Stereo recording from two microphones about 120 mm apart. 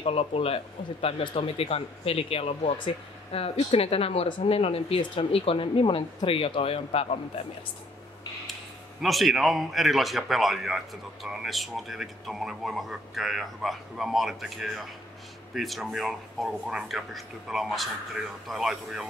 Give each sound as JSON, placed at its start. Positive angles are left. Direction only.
{"t": 0.0, "sound": "speech", "side_deg": 55}
{"t": 9.0, "sound": "speech", "side_deg": 0}